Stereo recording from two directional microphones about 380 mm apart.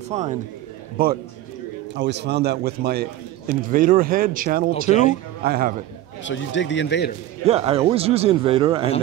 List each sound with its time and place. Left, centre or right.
0.1 s a man's voice: centre
4.8 s speech: centre
5.4 s a man's voice: right
6.2 s speech: left
7.4 s a man's voice: centre